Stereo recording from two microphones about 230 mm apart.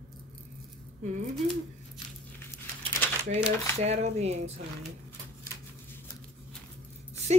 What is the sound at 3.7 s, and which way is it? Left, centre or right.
Speech, right.